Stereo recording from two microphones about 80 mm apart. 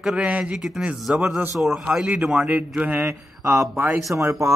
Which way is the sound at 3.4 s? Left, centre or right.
Right.